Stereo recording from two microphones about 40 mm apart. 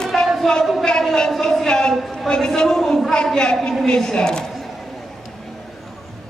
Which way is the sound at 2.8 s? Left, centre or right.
Centre.